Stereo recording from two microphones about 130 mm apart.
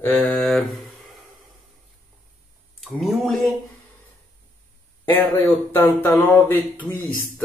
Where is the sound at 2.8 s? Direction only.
Centre (ahead or behind).